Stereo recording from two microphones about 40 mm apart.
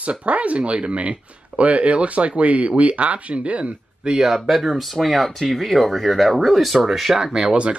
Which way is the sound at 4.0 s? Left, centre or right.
Centre.